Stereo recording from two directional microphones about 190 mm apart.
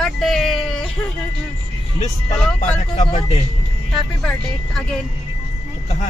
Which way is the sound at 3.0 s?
30° left (ahead or behind).